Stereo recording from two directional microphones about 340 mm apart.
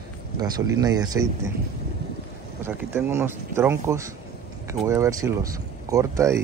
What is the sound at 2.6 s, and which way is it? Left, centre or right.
Speech, centre.